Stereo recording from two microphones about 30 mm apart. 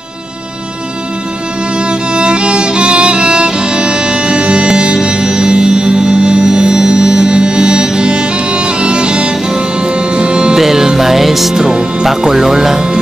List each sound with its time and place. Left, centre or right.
1.8 s music: right
10.6 s music: centre
11.5 s music: right